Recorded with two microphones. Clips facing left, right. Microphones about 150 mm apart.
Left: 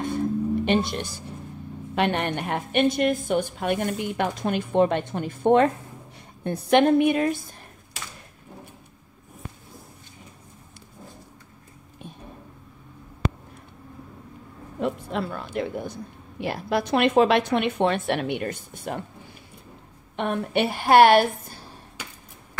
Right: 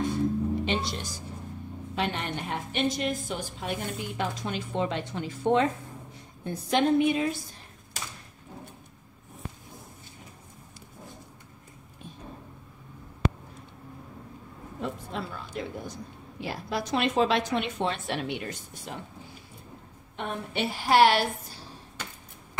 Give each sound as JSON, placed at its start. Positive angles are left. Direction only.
{"t": 0.7, "sound": "speech", "side_deg": 60}
{"t": 14.8, "sound": "speech", "side_deg": 65}
{"t": 20.2, "sound": "speech", "side_deg": 65}
{"t": 22.0, "sound": "chop", "side_deg": 10}